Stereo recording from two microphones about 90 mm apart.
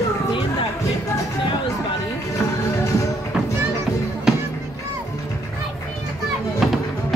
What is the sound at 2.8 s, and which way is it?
Music, 35° left (ahead or behind).